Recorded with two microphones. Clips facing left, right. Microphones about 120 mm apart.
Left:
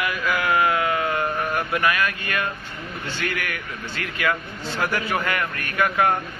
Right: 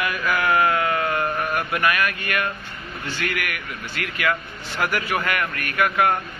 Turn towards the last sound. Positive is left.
turn(degrees=25)  # may be behind; listen again after turning